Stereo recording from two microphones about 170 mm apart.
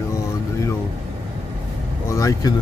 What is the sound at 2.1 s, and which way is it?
Speech, 20° left (ahead or behind).